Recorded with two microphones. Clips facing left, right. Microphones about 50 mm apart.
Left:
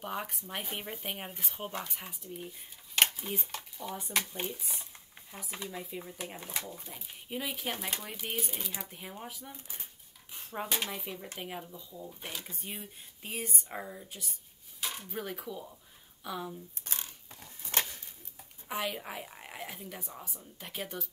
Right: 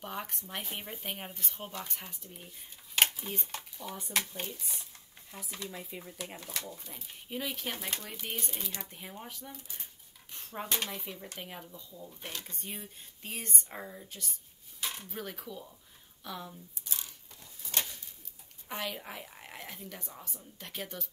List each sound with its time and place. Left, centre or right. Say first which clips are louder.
0.0 s speech: left 2 dB; centre
2.2 s speech: left 6 dB; centre
5.9 s speech: left 3 dB; centre
6.1 s speech: left 1 dB; centre
6.9 s speech: left 1 dB; centre
16.8 s a sound: right 1 dB; left
17.4 s a sound: left 3 dB; left
18.7 s speech: left 3 dB; centre